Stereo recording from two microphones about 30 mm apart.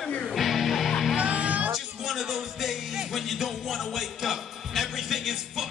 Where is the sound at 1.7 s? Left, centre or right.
Centre.